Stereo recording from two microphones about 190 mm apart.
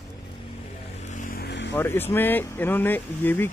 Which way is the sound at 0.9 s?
40° left (ahead or behind).